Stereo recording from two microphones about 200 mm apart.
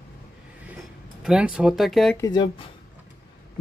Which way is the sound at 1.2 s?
5° right (ahead or behind).